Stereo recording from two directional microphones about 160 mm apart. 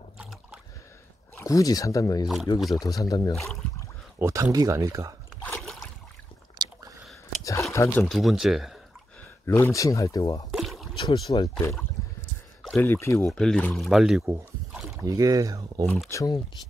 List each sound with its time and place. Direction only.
0.2 s a sound: 5° right (ahead or behind)
1.3 s speech: 20° left (ahead or behind)
4.2 s speech: 20° right (ahead or behind)
5.4 s boat: 5° left (ahead or behind)
6.6 s squish: 25° right (ahead or behind)
7.7 s speech: 20° left (ahead or behind)
8.0 s speech: centre (ahead or behind)
9.5 s speech: 20° left (ahead or behind)
10.5 s rowboat: centre (ahead or behind)
11.0 s speech: 25° left (ahead or behind)
12.8 s speech: 15° left (ahead or behind)
13.3 s speech: 5° left (ahead or behind)
15.0 s speech: 20° right (ahead or behind)
16.1 s speech: 20° left (ahead or behind)